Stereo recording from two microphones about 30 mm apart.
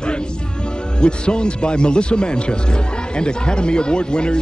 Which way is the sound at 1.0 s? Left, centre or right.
Left.